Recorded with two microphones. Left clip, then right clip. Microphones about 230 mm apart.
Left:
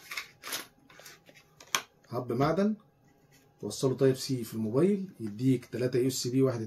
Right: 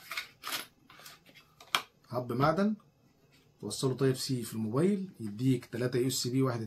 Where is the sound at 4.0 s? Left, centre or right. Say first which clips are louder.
Left 5 dB; centre.